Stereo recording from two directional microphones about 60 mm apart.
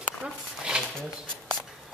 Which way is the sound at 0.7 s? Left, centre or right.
Centre.